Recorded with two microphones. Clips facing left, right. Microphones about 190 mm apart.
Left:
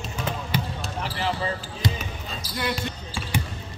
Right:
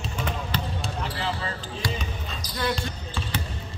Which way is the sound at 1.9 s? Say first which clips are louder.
Even; 5° left (ahead or behind).